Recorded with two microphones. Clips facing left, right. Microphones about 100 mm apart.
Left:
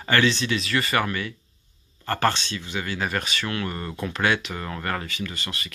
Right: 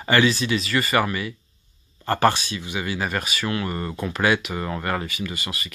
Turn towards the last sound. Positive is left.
turn(degrees=-5)  # may be behind; listen again after turning